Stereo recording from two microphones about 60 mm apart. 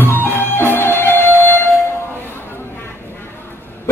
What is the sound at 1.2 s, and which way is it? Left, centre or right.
Music, right.